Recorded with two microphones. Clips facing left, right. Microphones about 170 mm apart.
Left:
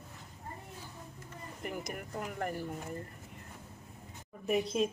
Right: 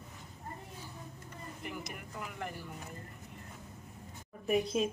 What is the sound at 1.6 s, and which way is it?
Speech, 45° left (ahead or behind).